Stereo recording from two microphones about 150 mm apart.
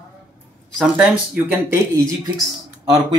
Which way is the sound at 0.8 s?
5° right (ahead or behind).